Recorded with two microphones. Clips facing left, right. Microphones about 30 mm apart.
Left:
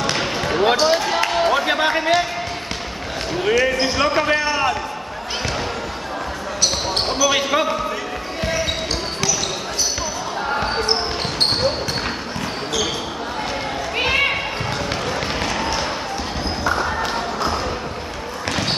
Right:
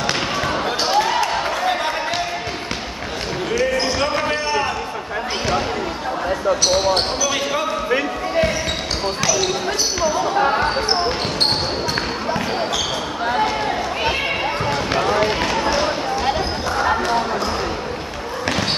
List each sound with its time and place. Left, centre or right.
0.0 s basketball bounce: centre
1.5 s basketball bounce: left
3.5 s basketball bounce: centre
7.2 s basketball bounce: centre
11.9 s basketball bounce: centre
15.0 s basketball bounce: centre